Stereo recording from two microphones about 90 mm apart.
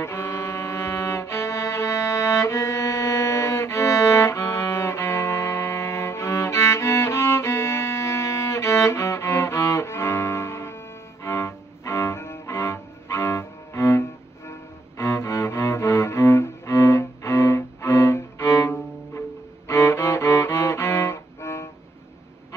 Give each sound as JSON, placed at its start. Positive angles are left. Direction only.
{"t": 0.0, "sound": "music", "side_deg": 30}
{"t": 11.2, "sound": "cello", "side_deg": 30}